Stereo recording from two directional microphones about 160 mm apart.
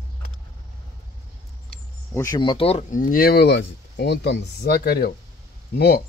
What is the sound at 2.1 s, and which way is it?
Speech, 20° left (ahead or behind).